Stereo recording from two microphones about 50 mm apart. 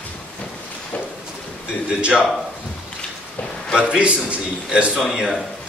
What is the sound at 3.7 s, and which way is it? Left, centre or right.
A man's voice, centre.